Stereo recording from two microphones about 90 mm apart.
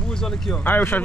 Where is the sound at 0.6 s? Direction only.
20° left (ahead or behind).